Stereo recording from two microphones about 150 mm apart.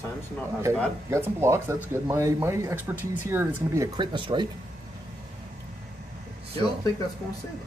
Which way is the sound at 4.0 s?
30° right (ahead or behind).